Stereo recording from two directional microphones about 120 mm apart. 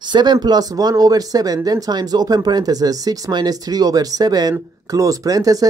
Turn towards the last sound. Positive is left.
turn(degrees=-30)  # may be behind; listen again after turning